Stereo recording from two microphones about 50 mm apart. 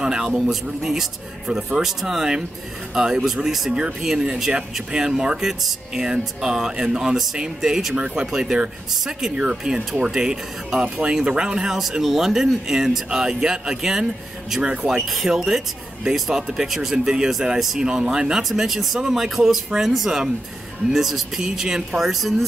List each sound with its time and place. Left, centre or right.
0.0 s speech: centre
14.6 s speech: right
15.0 s speech: centre
16.9 s speech: centre